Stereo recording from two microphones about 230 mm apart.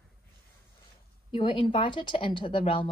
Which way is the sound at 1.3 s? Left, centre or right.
Left.